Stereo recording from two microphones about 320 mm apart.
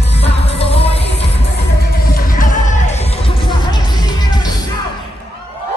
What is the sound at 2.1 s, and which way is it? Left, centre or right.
Music, left.